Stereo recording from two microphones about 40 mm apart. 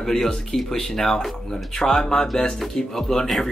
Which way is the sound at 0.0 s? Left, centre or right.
Centre.